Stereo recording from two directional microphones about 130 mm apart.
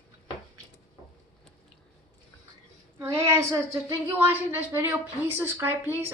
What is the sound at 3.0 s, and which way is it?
A woman's voice, 25° right (ahead or behind).